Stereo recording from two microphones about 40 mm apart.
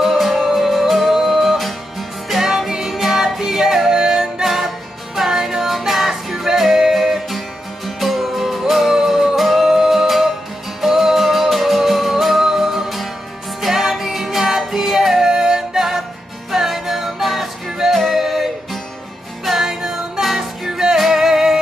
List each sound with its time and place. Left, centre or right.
0.0 s music: centre
17.6 s music: centre
17.9 s music: centre